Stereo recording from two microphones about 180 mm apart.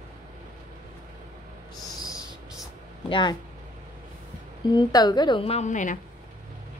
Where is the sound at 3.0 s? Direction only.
25° left (ahead or behind).